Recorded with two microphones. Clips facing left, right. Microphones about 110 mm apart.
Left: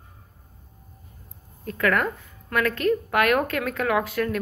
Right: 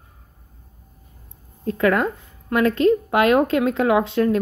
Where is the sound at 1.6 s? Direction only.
25° right (ahead or behind).